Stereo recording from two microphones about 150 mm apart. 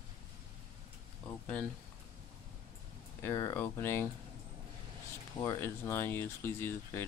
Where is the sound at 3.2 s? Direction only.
15° left (ahead or behind).